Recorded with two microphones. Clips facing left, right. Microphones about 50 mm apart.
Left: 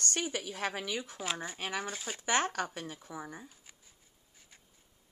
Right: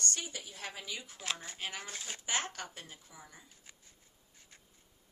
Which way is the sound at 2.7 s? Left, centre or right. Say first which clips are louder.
Left 9 dB; left.